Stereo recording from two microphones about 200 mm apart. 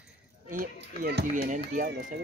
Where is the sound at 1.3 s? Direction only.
35° right (ahead or behind).